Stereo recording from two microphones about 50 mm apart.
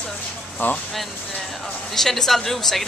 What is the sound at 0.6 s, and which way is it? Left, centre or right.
Speech, left.